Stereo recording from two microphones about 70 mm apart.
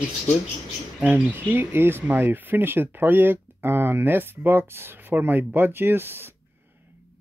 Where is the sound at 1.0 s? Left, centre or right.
Right.